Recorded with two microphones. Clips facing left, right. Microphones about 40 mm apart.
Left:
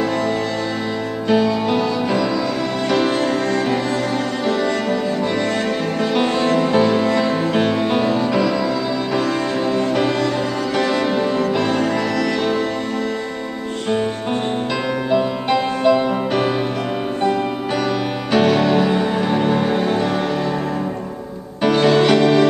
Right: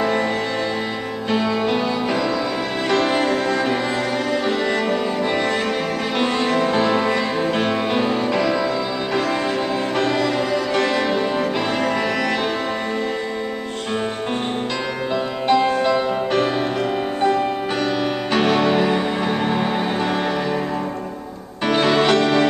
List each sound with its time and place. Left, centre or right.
1.3 s music: centre
3.2 s music: centre
6.7 s music: centre
9.9 s music: centre
15.0 s music: centre
18.3 s music: centre
21.6 s music: centre